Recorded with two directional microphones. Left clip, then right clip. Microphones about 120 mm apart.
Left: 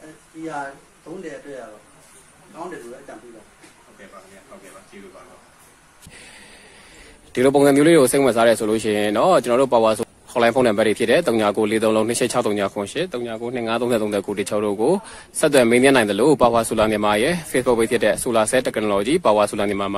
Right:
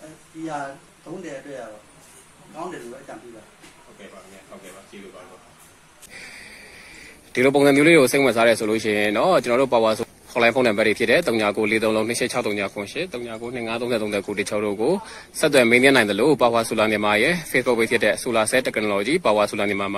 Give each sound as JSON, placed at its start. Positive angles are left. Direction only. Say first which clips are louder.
{"t": 7.3, "sound": "speech", "louder": "left 1 dB", "side_deg": 15}
{"t": 12.0, "sound": "speech", "louder": "left 3 dB", "side_deg": 35}
{"t": 13.4, "sound": "speech", "louder": "left 4 dB", "side_deg": 50}
{"t": 13.7, "sound": "speech", "louder": "left 3 dB", "side_deg": 35}